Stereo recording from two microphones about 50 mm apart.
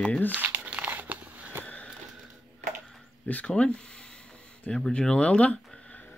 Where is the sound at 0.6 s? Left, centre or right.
Right.